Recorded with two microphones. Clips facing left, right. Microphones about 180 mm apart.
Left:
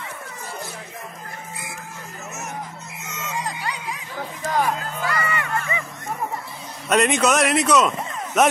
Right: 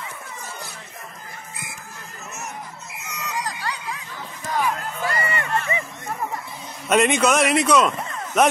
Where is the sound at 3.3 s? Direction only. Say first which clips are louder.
Left 1 dB; 30° left (ahead or behind).